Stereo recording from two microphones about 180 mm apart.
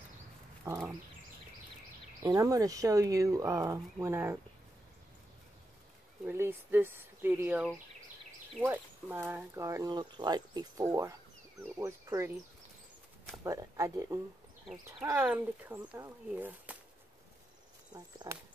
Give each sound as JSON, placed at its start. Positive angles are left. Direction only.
{"t": 0.7, "sound": "a sound", "side_deg": -15}
{"t": 2.2, "sound": "speech", "side_deg": -20}
{"t": 6.2, "sound": "speech", "side_deg": -10}
{"t": 13.4, "sound": "speech", "side_deg": -15}
{"t": 17.9, "sound": "speech", "side_deg": -20}